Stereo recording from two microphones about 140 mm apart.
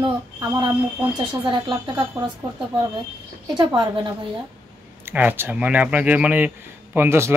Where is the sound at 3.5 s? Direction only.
30° right (ahead or behind).